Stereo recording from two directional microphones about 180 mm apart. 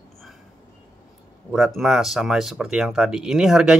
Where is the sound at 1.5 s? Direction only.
Centre (ahead or behind).